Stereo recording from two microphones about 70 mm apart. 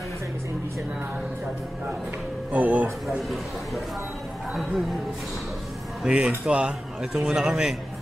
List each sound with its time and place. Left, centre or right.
2.5 s speech: right
3.1 s a man's voice: centre
6.0 s a man's voice: centre